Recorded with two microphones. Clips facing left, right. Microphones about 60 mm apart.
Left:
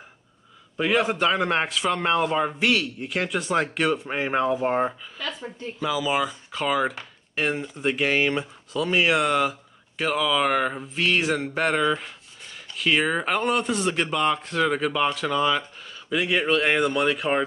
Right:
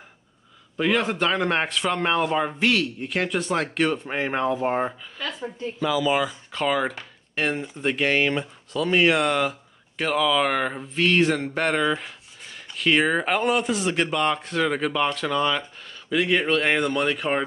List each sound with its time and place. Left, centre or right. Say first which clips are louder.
0.7 s speech: even; centre
5.8 s speech: right 2 dB; centre